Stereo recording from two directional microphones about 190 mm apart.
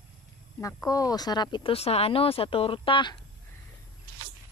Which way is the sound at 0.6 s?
15° left (ahead or behind).